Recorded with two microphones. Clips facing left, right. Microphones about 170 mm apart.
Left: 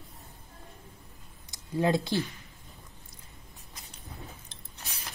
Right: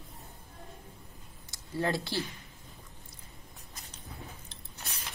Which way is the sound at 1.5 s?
20° left (ahead or behind).